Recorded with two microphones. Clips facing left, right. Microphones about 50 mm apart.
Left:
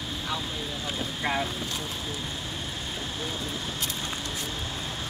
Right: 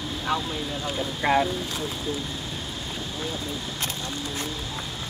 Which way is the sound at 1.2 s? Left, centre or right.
Right.